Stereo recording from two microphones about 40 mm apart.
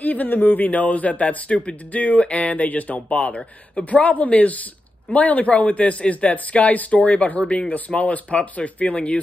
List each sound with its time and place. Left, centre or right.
0.0 s speech: left